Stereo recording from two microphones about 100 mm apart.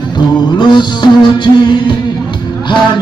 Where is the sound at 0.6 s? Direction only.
50° left (ahead or behind).